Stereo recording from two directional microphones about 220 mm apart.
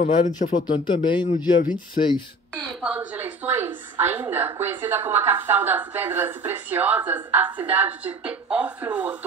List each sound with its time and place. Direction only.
0.0 s speech: 35° left (ahead or behind)
0.5 s speech: 20° left (ahead or behind)
2.0 s speech: 35° left (ahead or behind)
2.5 s a woman's voice: 5° right (ahead or behind)